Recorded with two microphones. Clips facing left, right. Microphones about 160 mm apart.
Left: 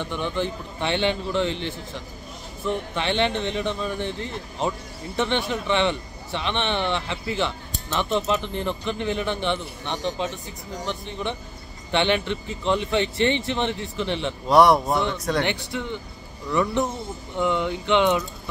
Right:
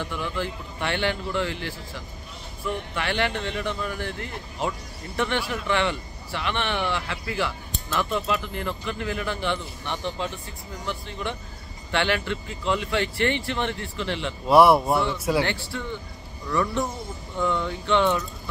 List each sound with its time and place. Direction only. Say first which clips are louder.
0.0 s speech: left 3 dB; 25° left (ahead or behind)
14.5 s speech: even; 5° right (ahead or behind)
15.4 s speech: left 2 dB; 20° left (ahead or behind)